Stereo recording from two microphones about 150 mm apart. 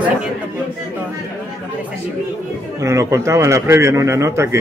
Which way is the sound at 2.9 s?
20° right (ahead or behind).